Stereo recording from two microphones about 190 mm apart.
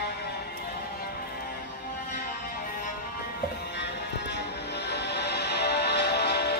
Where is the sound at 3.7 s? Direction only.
65° left (ahead or behind).